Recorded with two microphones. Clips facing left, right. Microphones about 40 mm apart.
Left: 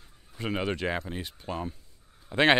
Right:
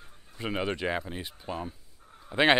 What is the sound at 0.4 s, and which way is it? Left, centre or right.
Speech, centre.